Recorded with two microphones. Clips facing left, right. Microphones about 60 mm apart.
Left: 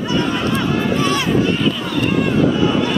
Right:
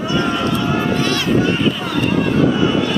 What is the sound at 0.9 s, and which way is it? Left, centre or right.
Run, left.